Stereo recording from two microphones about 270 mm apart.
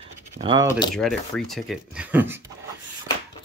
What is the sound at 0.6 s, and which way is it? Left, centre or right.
Speech, centre.